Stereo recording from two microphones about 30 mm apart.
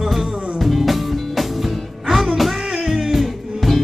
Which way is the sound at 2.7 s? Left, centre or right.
Centre.